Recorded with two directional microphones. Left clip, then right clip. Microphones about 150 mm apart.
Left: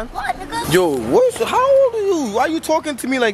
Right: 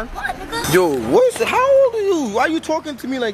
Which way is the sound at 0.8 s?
Centre (ahead or behind).